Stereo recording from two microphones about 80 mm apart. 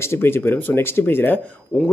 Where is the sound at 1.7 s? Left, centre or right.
Centre.